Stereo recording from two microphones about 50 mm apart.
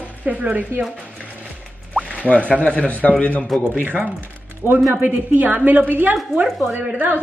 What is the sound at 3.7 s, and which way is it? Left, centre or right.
A woman's voice, right.